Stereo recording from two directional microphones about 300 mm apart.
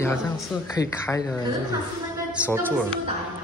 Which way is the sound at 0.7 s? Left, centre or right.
Centre.